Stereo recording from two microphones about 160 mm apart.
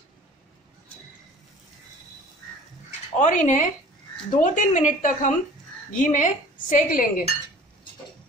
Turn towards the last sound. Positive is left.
turn(degrees=60)  # may be behind; listen again after turning